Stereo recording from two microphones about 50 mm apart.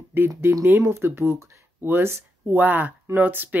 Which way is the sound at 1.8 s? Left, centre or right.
Right.